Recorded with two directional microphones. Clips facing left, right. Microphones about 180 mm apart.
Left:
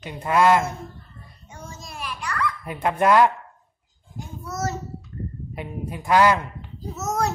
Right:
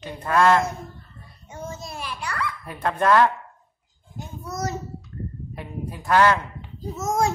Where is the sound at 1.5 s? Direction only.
30° right (ahead or behind).